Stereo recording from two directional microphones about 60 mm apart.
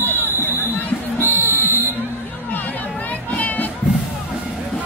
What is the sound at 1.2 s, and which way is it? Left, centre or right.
Music, left.